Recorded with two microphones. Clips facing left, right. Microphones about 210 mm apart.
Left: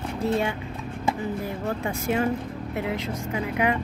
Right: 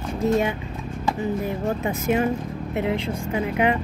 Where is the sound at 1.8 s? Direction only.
20° right (ahead or behind).